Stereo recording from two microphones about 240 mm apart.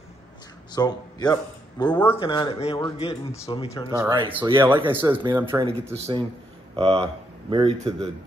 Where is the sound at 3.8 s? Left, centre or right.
Centre.